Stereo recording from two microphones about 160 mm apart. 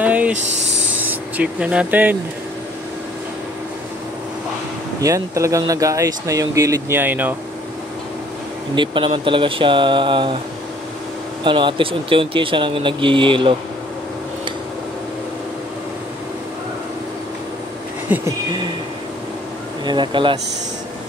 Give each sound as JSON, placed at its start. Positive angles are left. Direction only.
{"t": 0.0, "sound": "a sound", "side_deg": -10}
{"t": 0.3, "sound": "speech", "side_deg": -50}
{"t": 0.9, "sound": "speech", "side_deg": -10}
{"t": 5.0, "sound": "speech", "side_deg": -20}
{"t": 8.7, "sound": "speech", "side_deg": -30}
{"t": 11.4, "sound": "speech", "side_deg": -30}
{"t": 18.1, "sound": "a sound", "side_deg": -10}
{"t": 19.8, "sound": "speech", "side_deg": -30}